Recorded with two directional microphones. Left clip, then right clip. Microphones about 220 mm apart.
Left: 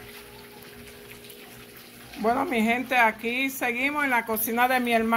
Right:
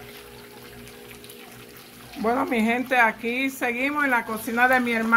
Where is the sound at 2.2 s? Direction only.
10° left (ahead or behind).